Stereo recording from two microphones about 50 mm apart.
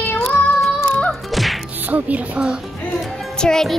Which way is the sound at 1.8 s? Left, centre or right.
Right.